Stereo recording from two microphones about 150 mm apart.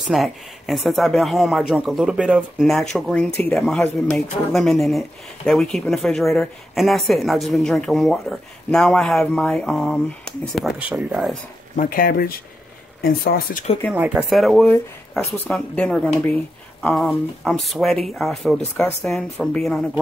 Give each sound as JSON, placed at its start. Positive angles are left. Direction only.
{"t": 0.1, "sound": "speech", "side_deg": 0}
{"t": 11.7, "sound": "speech", "side_deg": 70}
{"t": 13.9, "sound": "speech", "side_deg": -5}
{"t": 15.1, "sound": "speech", "side_deg": 10}